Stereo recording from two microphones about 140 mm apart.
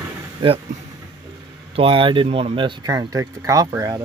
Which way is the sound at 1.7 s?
40° right (ahead or behind).